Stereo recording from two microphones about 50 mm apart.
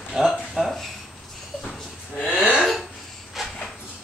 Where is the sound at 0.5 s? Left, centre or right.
Centre.